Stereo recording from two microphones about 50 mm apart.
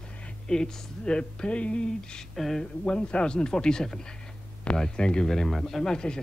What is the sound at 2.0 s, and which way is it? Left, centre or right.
Speech, centre.